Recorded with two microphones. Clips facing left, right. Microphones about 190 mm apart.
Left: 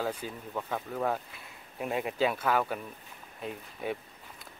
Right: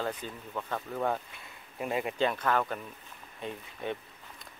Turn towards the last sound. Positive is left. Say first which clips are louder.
# left 1 dB
turn(degrees=5)  # may be behind; listen again after turning